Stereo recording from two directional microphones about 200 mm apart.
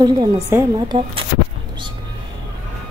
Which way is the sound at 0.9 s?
25° right (ahead or behind).